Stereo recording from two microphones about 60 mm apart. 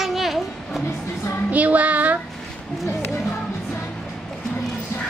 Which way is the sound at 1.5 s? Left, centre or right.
Right.